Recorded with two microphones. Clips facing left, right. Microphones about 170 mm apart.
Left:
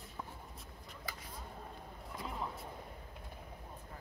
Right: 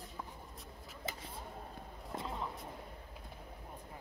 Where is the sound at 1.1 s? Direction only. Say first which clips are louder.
Right 4 dB; 25° right (ahead or behind).